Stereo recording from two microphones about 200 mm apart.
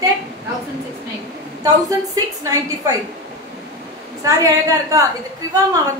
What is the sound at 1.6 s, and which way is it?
A woman's voice, 20° right (ahead or behind).